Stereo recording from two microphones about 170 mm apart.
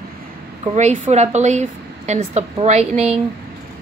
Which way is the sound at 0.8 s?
45° right (ahead or behind).